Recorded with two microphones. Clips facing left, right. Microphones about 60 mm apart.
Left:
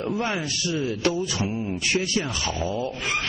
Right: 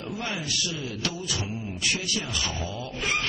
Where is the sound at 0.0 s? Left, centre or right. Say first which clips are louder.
Left 6 dB; left.